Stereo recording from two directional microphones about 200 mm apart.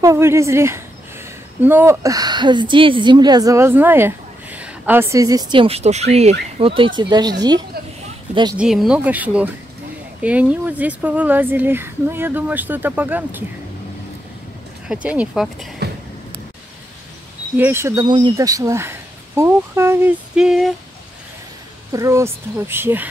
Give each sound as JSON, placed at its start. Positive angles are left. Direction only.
{"t": 0.0, "sound": "a woman's voice", "side_deg": -15}
{"t": 8.5, "sound": "speech", "side_deg": -5}
{"t": 15.0, "sound": "speech", "side_deg": -5}
{"t": 17.6, "sound": "speech", "side_deg": -10}
{"t": 21.9, "sound": "speech", "side_deg": -15}